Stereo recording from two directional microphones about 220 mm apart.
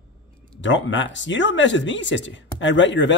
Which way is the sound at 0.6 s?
55° left (ahead or behind).